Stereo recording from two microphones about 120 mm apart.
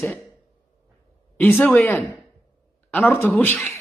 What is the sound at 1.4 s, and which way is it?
Speech, 15° left (ahead or behind).